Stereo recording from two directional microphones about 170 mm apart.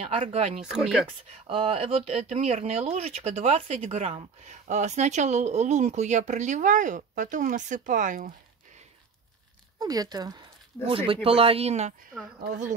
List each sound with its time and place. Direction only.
0.1 s speech: 40° right (ahead or behind)
0.6 s speech: 5° right (ahead or behind)
1.5 s speech: 35° right (ahead or behind)
9.8 s speech: 20° right (ahead or behind); by 11.9 s 40° right (ahead or behind)